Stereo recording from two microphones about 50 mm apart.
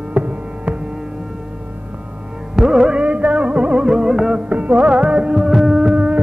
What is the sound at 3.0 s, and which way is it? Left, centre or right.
Music, right.